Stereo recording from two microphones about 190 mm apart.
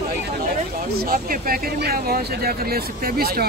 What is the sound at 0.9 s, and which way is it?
Speech, 50° right (ahead or behind).